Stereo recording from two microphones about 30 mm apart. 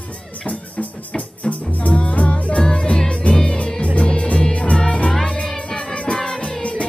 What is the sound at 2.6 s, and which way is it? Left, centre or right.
Music, left.